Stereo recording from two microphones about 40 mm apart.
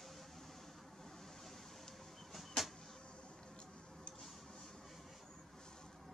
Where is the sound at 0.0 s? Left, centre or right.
Centre.